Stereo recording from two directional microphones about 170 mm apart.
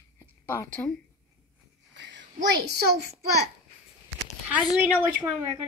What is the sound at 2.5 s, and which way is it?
Speech, 75° right (ahead or behind).